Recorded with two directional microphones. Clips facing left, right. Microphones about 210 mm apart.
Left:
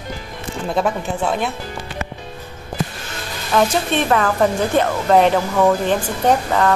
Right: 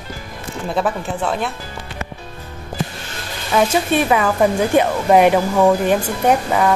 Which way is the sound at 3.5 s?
10° right (ahead or behind).